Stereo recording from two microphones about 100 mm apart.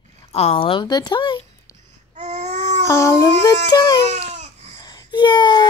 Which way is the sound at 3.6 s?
45° left (ahead or behind).